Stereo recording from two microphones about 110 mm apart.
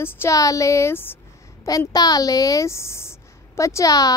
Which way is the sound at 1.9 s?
35° left (ahead or behind).